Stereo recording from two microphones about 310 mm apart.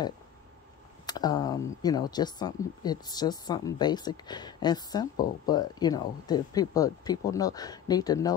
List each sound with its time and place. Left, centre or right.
1.0 s speech: centre